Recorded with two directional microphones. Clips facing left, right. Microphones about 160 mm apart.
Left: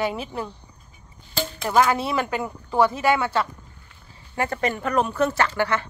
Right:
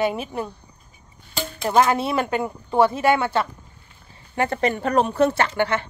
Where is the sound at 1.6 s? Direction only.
25° right (ahead or behind).